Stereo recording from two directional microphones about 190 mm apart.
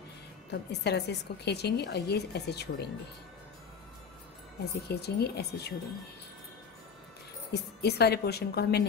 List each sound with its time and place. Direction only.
0.5 s a woman's voice: 60° left (ahead or behind)
4.8 s a woman's voice: 60° left (ahead or behind)
7.5 s a woman's voice: 60° left (ahead or behind)